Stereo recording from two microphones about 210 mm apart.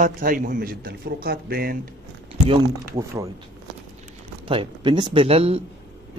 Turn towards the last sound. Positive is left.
turn(degrees=-25)  # may be behind; listen again after turning